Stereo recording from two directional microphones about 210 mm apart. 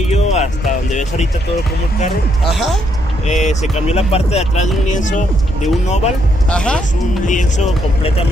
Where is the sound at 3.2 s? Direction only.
35° left (ahead or behind).